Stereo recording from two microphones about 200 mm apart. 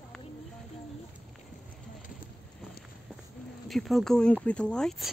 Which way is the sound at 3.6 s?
Centre (ahead or behind).